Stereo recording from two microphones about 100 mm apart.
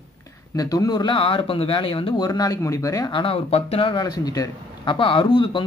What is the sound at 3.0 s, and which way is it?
Speech, 60° left (ahead or behind).